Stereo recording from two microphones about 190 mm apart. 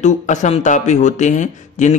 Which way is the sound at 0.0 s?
40° left (ahead or behind).